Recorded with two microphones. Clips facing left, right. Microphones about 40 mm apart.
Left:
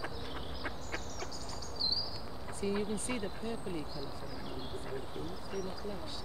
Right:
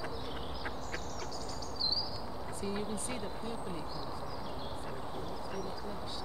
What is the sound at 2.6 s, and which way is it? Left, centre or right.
Speech, left.